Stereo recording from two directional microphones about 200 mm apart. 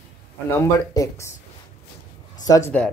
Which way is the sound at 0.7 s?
15° left (ahead or behind).